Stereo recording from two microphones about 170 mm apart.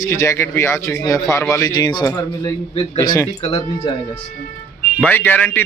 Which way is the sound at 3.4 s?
35° left (ahead or behind).